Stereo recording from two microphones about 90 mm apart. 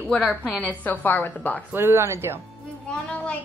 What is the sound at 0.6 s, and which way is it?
A woman's voice, 20° left (ahead or behind).